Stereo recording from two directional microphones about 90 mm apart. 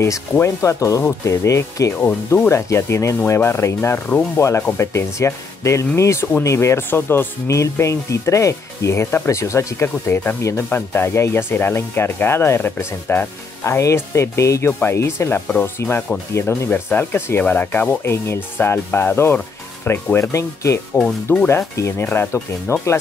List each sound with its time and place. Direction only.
0.0 s speech: 35° left (ahead or behind)
13.7 s speech: 35° left (ahead or behind)
20.9 s speech: 20° left (ahead or behind)
21.5 s speech: 30° left (ahead or behind)